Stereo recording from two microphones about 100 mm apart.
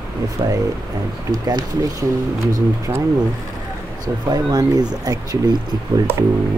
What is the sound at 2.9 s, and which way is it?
Speech, 30° right (ahead or behind).